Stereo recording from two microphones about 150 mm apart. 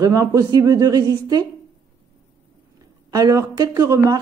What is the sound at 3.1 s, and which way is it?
A woman's voice, 20° right (ahead or behind).